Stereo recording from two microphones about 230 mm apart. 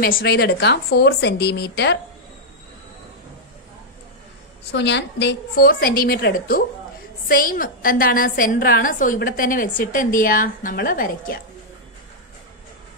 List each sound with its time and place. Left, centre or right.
0.0 s a woman's voice: left
4.7 s a woman's voice: left